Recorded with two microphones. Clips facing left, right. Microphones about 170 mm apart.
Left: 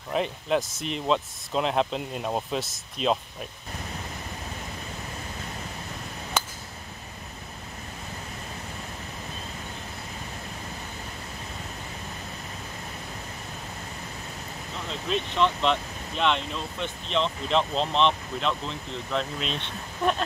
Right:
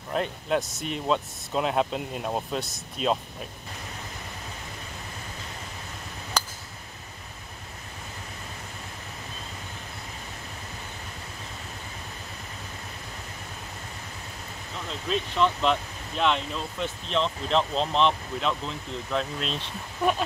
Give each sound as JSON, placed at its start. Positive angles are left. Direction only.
{"t": 0.1, "sound": "speech", "side_deg": 0}
{"t": 6.4, "sound": "a sound", "side_deg": 0}
{"t": 15.0, "sound": "speech", "side_deg": 0}